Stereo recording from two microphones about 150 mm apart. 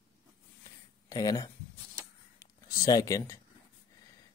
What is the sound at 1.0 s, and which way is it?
Speech, 25° left (ahead or behind).